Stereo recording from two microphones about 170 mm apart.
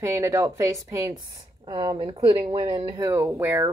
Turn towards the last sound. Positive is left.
turn(degrees=-15)  # may be behind; listen again after turning